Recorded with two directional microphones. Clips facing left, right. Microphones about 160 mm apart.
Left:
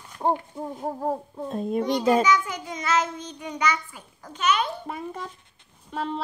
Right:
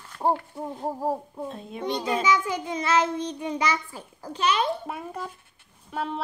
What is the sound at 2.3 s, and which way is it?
A child's voice, 30° right (ahead or behind).